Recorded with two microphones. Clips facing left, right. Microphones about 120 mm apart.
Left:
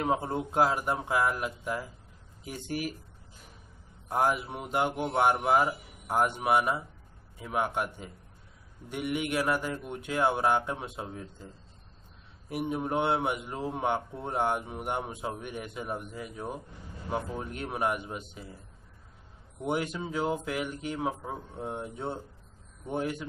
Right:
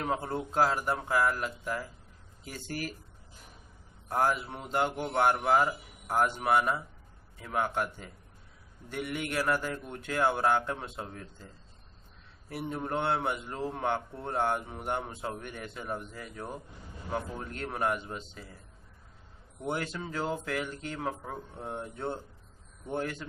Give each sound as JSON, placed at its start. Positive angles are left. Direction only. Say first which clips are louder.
{"t": 0.0, "sound": "speech", "louder": "left 3 dB", "side_deg": 20}
{"t": 4.1, "sound": "speech", "louder": "left 1 dB", "side_deg": 15}
{"t": 19.6, "sound": "speech", "louder": "left 3 dB", "side_deg": 15}